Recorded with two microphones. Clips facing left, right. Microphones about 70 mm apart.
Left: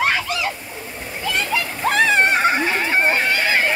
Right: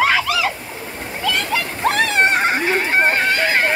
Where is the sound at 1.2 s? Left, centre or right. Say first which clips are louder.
Right 1 dB; right.